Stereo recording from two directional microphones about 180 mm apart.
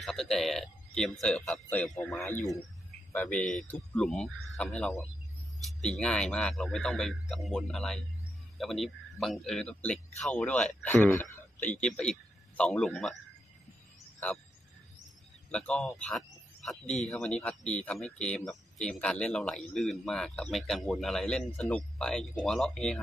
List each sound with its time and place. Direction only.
0.0 s speech: centre (ahead or behind)
15.5 s speech: 5° left (ahead or behind)
16.8 s speech: 40° left (ahead or behind)
17.1 s speech: 5° left (ahead or behind)